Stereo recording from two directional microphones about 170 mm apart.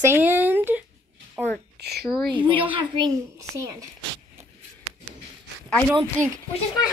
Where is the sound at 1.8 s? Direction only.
70° right (ahead or behind).